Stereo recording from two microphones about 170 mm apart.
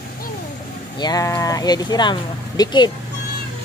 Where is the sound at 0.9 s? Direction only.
25° left (ahead or behind).